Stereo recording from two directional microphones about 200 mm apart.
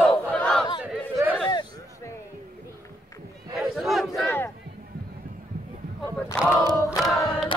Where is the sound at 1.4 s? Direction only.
20° left (ahead or behind).